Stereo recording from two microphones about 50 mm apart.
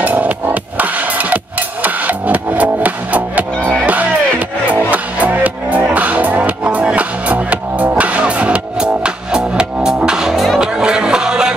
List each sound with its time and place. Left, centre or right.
0.0 s music: right; by 11.5 s centre